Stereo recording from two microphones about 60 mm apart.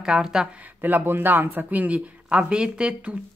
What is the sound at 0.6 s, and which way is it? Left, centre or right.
Speech, right.